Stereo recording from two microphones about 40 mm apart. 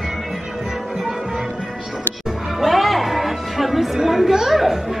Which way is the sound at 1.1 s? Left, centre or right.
Centre.